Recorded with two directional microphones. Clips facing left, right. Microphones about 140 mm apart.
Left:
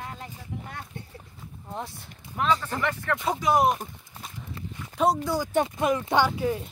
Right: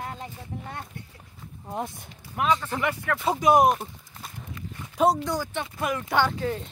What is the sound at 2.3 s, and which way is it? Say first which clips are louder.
Speech: right 1 dB; 10° right (ahead or behind).